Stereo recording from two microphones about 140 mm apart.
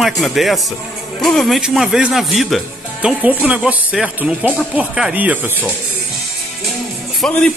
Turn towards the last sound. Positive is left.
turn(degrees=5)  # may be behind; listen again after turning